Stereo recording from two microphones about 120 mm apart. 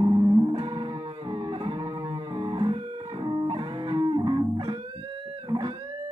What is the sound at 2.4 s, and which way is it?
Music, 40° right (ahead or behind).